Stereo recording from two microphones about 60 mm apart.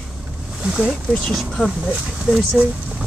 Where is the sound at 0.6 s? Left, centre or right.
Centre.